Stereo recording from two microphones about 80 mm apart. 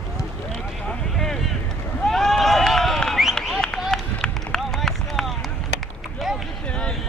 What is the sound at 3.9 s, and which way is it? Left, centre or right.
Run, centre.